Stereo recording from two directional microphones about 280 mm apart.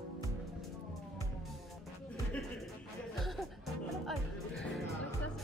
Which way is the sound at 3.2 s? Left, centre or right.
Centre.